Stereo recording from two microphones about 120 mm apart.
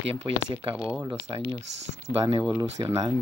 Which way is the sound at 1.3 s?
25° right (ahead or behind).